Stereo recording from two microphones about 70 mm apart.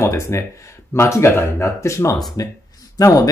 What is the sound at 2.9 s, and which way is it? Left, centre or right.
Speech, left.